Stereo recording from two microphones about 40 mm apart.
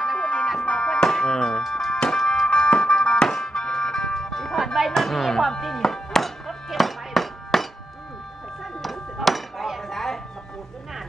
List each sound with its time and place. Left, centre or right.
0.2 s music: left
2.6 s music: left
3.0 s music: centre
4.9 s speech: centre
5.8 s music: centre
8.8 s music: centre